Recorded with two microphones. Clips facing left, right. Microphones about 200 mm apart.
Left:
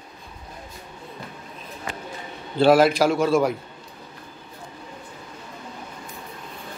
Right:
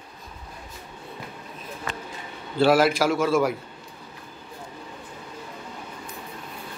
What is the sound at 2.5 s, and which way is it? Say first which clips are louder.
Speech: left 3 dB; 20° left (ahead or behind).